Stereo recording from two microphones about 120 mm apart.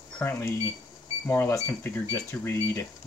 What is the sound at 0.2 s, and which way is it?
Speech, 20° left (ahead or behind).